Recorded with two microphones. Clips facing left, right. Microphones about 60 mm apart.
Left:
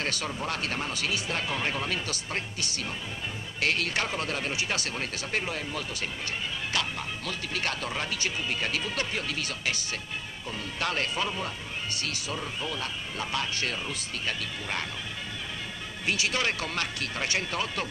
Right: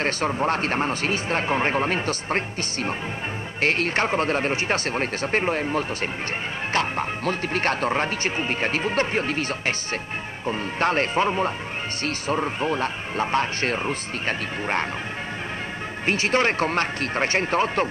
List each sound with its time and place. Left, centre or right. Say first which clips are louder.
0.0 s speech: right 9 dB; right
16.1 s speech: right 7 dB; right